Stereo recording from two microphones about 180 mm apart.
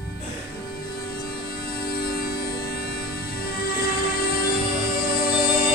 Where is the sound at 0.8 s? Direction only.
55° left (ahead or behind).